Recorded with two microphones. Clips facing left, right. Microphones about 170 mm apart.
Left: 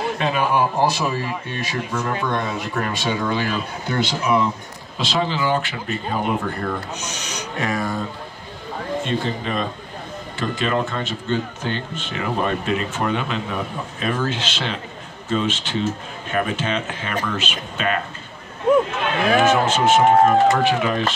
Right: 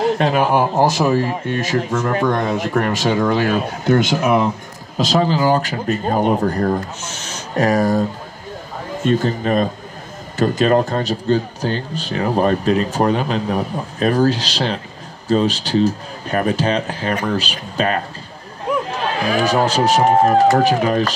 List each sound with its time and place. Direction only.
0.0 s a man's voice: 45° right (ahead or behind)
4.9 s speech: 40° right (ahead or behind)
7.0 s speech: 15° left (ahead or behind)
7.5 s speech: 40° right (ahead or behind)
9.0 s a man's voice: 45° right (ahead or behind)
18.9 s a sound: 35° right (ahead or behind)
19.4 s speech: 35° right (ahead or behind)